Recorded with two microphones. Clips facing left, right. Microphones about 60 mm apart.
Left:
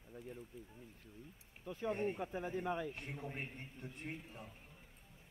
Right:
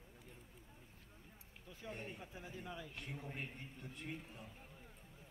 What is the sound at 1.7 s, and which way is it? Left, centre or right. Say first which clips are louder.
Speech: left 11 dB; left.